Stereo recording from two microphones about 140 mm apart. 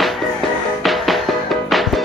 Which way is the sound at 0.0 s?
Centre (ahead or behind).